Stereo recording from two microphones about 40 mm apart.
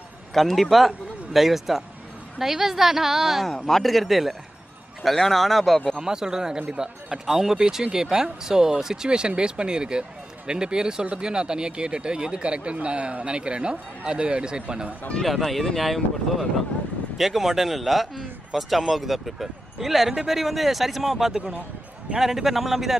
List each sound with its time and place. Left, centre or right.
0.3 s a man's voice: centre
3.4 s speech: centre
5.9 s speech: centre
7.6 s speech: centre
15.2 s speech: centre